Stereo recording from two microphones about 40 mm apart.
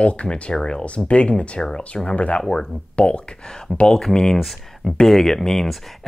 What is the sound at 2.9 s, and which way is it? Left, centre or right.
Speech, left.